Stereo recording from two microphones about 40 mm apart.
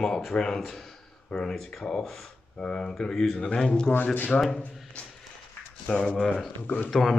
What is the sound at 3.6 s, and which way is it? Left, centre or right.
Speech, centre.